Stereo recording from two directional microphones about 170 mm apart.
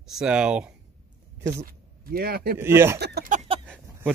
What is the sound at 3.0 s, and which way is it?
Speech, 75° right (ahead or behind).